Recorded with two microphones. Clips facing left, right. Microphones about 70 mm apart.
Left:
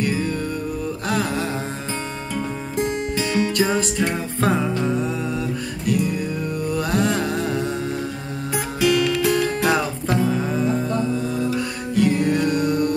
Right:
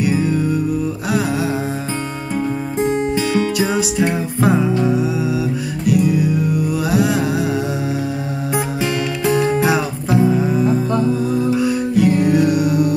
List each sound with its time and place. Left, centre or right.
0.0 s music: centre
3.2 s music: centre
8.8 s music: right; by 12.9 s centre